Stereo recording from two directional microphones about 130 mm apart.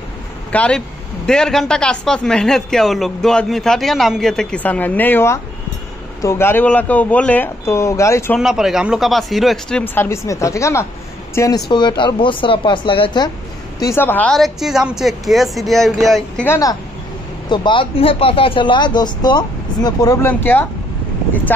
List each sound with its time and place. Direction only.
0.5 s speech: 10° left (ahead or behind)
8.4 s speech: 5° right (ahead or behind)
9.9 s speech: 20° left (ahead or behind); by 13.3 s 40° left (ahead or behind)
13.9 s speech: 15° left (ahead or behind)
14.3 s speech: centre (ahead or behind)
16.4 s speech: 25° left (ahead or behind)
17.5 s speech: 40° left (ahead or behind)
20.2 s speech: 15° left (ahead or behind)